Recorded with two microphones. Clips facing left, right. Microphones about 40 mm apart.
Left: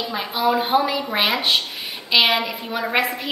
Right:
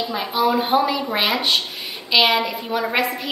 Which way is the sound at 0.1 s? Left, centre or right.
Centre.